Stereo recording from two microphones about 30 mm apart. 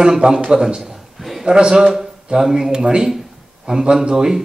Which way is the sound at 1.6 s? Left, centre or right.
Right.